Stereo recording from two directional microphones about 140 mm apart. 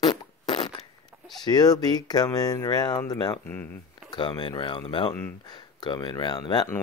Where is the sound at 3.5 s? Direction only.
15° left (ahead or behind).